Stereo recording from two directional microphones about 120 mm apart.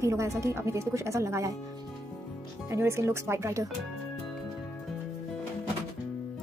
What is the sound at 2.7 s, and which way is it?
Speech, 20° right (ahead or behind).